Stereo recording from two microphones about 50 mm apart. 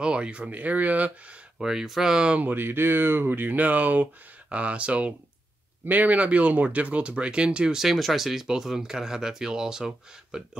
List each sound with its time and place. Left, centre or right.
0.0 s speech: right
0.5 s speech: right
1.6 s speech: centre
2.4 s speech: right; by 7.8 s centre
7.8 s speech: centre